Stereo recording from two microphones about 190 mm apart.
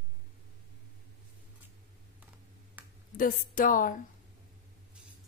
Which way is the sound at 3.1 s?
45° left (ahead or behind).